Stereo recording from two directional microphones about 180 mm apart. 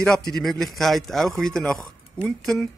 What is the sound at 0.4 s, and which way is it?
Speech, centre (ahead or behind).